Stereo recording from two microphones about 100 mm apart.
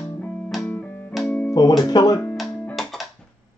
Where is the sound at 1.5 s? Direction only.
40° left (ahead or behind).